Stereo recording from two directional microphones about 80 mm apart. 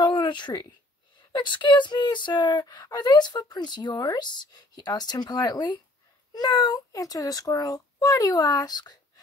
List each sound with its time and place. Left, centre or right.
0.0 s a sound: left
1.3 s speech: left
2.6 s a child's voice: left